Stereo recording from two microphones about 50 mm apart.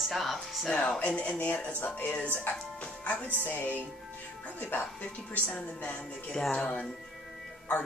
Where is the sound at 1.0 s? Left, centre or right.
Left.